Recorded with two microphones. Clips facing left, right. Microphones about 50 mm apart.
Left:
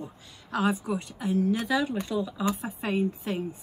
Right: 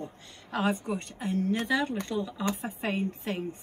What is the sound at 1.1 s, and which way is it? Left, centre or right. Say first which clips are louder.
A woman's voice: left 3 dB; right.